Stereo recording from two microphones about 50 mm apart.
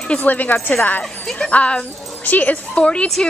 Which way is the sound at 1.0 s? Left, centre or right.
Centre.